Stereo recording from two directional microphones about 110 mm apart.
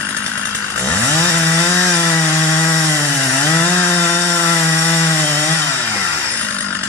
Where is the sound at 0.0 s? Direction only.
15° left (ahead or behind).